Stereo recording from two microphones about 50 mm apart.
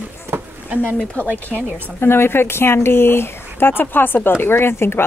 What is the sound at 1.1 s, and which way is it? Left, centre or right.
Speech, left.